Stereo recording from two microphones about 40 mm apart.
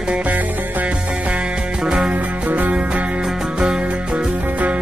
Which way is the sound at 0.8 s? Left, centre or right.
Right.